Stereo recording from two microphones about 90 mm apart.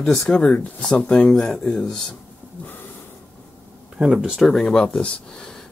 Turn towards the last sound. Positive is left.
turn(degrees=5)  # may be behind; listen again after turning